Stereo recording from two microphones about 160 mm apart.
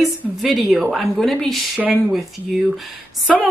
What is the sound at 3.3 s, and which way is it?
Speech, centre (ahead or behind).